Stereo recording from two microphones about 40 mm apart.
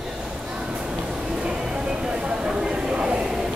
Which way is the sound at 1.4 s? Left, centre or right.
Right.